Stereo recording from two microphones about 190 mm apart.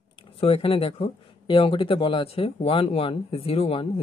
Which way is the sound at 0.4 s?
30° left (ahead or behind).